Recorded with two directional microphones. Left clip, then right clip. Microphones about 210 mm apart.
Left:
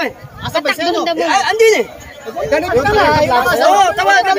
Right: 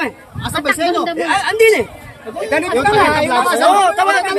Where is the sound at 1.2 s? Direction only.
Centre (ahead or behind).